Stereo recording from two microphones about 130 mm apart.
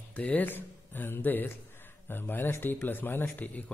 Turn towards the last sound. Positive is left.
turn(degrees=15)  # may be behind; listen again after turning